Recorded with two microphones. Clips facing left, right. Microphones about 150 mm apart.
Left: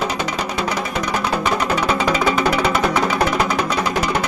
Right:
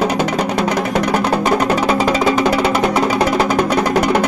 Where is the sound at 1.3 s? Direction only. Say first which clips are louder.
Right 3 dB; 40° right (ahead or behind).